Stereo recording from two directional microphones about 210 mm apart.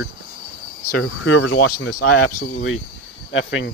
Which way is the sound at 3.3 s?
65° left (ahead or behind).